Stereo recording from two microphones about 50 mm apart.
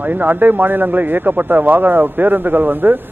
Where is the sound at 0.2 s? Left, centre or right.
Right.